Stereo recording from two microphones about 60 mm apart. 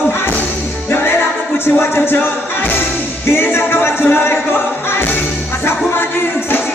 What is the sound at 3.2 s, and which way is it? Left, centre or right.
Music, left.